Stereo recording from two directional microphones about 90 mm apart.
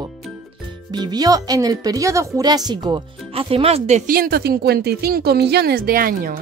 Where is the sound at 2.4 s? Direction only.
50° right (ahead or behind).